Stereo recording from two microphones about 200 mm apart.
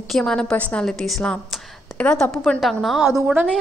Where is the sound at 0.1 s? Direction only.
5° left (ahead or behind).